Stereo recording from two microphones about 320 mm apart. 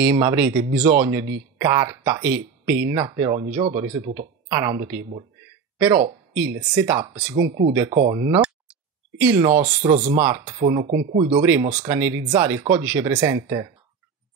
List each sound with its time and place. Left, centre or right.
0.0 s speech: centre
7.3 s speech: right
7.7 s speech: centre
8.0 s speech: right
8.3 s clicking: centre
9.2 s speech: centre
10.4 s speech: centre
11.1 s speech: centre